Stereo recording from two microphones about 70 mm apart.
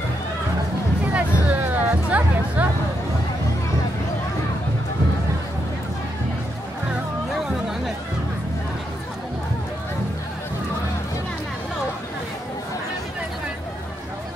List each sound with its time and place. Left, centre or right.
1.0 s music: right